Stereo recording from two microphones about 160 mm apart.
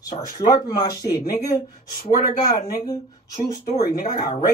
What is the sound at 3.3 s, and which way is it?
Speech, 50° left (ahead or behind).